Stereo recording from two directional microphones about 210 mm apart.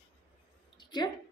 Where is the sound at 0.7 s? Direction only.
20° left (ahead or behind).